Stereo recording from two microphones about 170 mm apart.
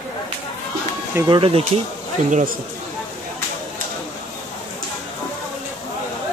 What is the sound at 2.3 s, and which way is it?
Speech, 45° right (ahead or behind).